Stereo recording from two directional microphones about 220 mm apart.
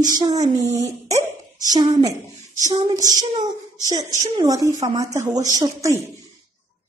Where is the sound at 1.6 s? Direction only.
15° right (ahead or behind).